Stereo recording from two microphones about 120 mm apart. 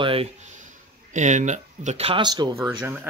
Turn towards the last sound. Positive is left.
turn(degrees=-20)  # may be behind; listen again after turning